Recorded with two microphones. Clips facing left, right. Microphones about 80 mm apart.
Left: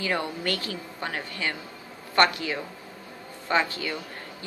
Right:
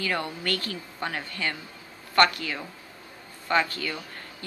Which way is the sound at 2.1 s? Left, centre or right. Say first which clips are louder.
Even; left.